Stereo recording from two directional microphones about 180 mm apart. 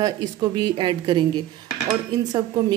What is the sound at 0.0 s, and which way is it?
A woman's voice, 25° right (ahead or behind).